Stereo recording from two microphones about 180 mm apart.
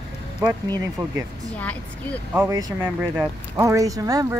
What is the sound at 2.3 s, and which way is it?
Speech, 10° right (ahead or behind).